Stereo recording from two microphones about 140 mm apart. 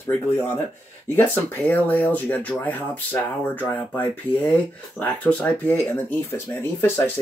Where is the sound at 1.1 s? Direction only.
15° left (ahead or behind).